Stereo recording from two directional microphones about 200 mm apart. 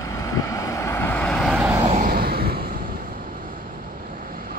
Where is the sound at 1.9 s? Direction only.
45° right (ahead or behind).